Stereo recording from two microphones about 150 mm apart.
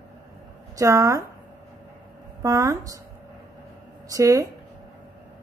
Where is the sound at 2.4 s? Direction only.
25° right (ahead or behind).